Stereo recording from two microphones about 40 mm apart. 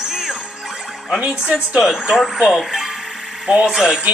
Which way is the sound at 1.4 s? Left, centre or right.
Right.